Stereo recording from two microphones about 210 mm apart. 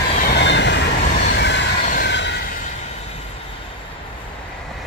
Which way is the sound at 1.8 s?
45° left (ahead or behind).